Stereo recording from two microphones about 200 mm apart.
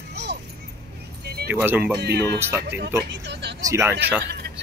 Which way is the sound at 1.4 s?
10° right (ahead or behind).